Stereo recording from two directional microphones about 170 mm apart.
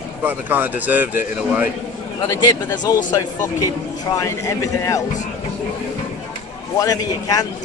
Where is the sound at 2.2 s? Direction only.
20° left (ahead or behind).